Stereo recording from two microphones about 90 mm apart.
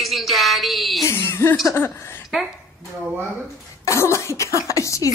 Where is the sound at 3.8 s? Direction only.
35° left (ahead or behind).